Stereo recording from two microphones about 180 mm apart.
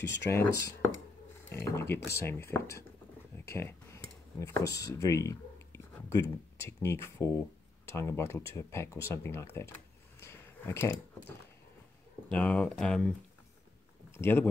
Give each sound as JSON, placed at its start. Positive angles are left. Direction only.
{"t": 0.3, "sound": "speech", "side_deg": 15}
{"t": 3.5, "sound": "computer keyboard", "side_deg": 15}
{"t": 5.0, "sound": "a sound", "side_deg": 15}
{"t": 6.6, "sound": "speech", "side_deg": 15}
{"t": 10.2, "sound": "a sound", "side_deg": 15}
{"t": 12.3, "sound": "speech", "side_deg": 10}
{"t": 14.1, "sound": "speech", "side_deg": 15}